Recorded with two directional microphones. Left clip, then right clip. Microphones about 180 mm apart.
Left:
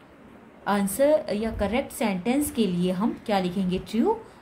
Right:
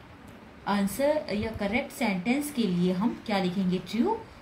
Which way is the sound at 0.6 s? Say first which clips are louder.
Left 4 dB; 55° left (ahead or behind).